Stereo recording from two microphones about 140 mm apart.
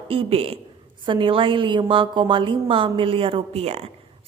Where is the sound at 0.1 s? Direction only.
40° right (ahead or behind).